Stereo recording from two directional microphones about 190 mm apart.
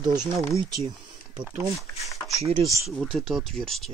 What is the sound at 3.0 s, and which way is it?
Speech, centre (ahead or behind).